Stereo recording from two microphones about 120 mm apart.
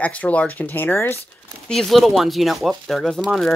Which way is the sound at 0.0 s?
10° left (ahead or behind).